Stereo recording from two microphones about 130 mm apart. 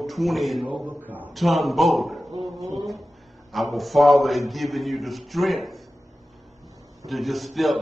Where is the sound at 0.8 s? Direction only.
15° right (ahead or behind).